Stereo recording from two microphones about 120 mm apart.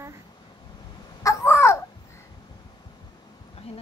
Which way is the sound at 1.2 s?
25° left (ahead or behind).